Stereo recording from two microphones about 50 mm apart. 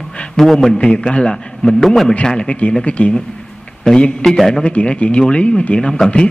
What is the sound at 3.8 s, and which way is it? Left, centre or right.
A man's voice, centre.